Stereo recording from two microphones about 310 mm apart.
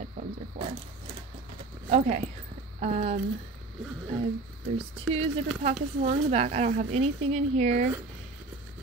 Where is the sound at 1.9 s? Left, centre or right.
Right.